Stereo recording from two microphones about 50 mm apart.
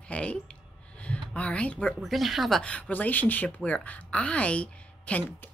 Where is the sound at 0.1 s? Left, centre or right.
Left.